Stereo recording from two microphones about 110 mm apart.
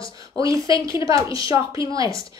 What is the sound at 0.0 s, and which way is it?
A woman's voice, 30° right (ahead or behind).